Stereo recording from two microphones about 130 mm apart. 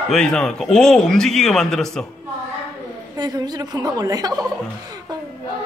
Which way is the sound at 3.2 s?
30° right (ahead or behind).